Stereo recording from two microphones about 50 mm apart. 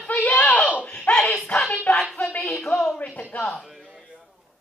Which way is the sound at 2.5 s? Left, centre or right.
Centre.